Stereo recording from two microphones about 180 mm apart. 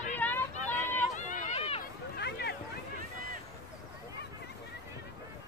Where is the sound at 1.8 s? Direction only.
65° left (ahead or behind).